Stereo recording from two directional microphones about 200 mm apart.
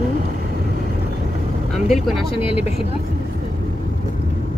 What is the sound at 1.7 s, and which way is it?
Speech, centre (ahead or behind).